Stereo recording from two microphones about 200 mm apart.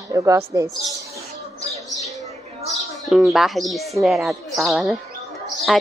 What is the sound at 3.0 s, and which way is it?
A woman's voice, centre (ahead or behind).